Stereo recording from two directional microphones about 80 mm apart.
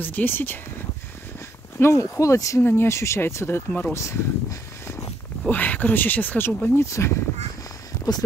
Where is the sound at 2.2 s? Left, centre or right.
Left.